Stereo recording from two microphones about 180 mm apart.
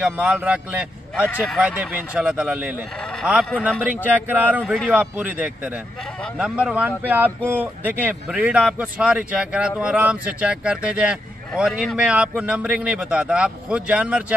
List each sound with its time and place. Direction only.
0.0 s speech: 5° right (ahead or behind)
1.2 s speech: 10° left (ahead or behind)
1.6 s speech: 5° right (ahead or behind)